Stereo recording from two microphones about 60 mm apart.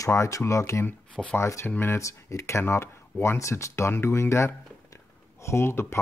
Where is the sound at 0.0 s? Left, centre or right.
Left.